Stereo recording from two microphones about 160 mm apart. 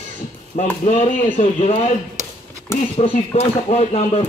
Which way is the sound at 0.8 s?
50° left (ahead or behind).